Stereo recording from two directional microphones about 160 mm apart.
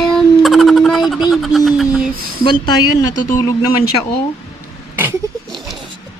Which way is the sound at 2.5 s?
25° left (ahead or behind).